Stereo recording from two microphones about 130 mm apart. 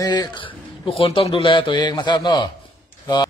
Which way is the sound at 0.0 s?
30° left (ahead or behind).